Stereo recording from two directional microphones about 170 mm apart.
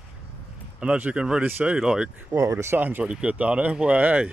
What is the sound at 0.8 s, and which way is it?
Speech, 5° right (ahead or behind).